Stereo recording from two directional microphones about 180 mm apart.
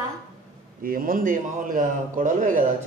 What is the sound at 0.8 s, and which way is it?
A man's voice, 50° right (ahead or behind).